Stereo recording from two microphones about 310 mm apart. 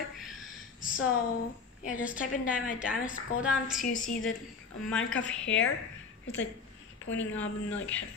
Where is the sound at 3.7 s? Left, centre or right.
Left.